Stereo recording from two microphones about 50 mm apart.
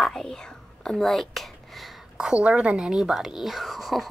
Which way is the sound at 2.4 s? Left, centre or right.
Right.